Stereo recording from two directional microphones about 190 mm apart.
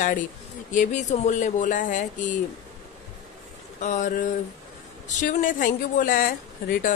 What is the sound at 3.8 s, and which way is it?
A woman's voice, 40° left (ahead or behind).